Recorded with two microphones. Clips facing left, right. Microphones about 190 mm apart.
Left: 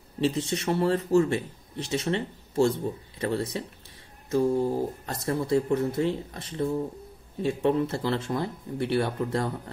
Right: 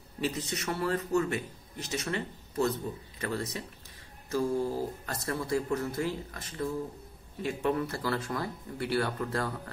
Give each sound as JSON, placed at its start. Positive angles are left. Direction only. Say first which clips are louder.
{"t": 0.2, "sound": "speech", "louder": "left 7 dB", "side_deg": 25}